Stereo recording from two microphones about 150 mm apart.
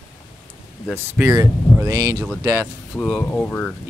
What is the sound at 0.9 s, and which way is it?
Speech, 15° right (ahead or behind).